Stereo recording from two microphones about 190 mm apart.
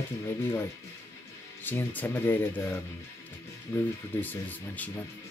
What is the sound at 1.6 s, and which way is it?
Speech, 10° left (ahead or behind).